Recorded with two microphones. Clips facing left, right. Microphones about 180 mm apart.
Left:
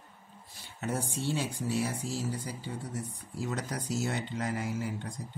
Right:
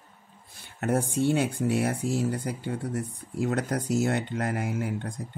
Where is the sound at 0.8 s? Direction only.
55° right (ahead or behind).